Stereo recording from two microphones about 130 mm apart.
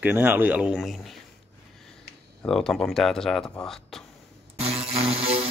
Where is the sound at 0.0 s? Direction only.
15° right (ahead or behind).